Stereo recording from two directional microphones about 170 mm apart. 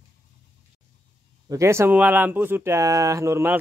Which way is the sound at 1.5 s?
15° right (ahead or behind).